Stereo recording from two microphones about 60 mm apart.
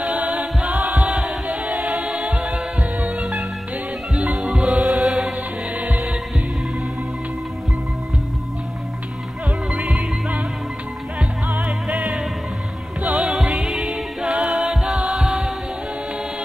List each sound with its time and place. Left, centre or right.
0.0 s choir: right
4.1 s music: centre
9.7 s music: right